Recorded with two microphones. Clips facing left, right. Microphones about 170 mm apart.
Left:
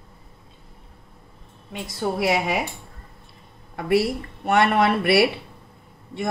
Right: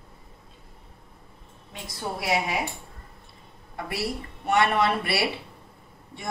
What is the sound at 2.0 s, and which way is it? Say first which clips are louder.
Speech: left 7 dB; 65° left (ahead or behind).